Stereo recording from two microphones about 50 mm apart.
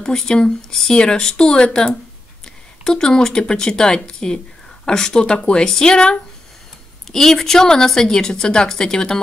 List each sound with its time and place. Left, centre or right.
0.0 s a woman's voice: centre